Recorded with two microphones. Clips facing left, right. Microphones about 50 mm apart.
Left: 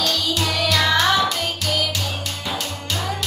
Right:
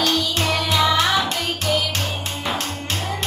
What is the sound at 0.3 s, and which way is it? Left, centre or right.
Music, right.